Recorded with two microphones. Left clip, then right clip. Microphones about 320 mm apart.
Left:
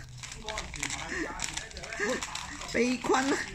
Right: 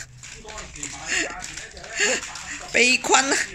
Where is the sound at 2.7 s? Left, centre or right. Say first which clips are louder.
Right 11 dB; right.